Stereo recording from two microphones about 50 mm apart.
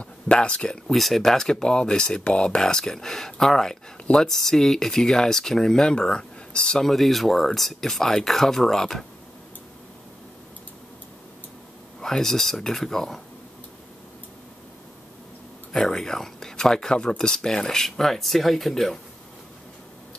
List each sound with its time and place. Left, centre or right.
0.0 s speech: left
0.9 s speech: centre
6.8 s speech: centre
12.0 s speech: centre
15.7 s speech: centre